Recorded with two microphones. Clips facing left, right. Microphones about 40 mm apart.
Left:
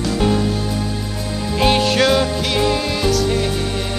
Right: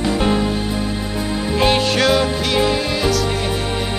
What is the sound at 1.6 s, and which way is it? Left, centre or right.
Music, centre.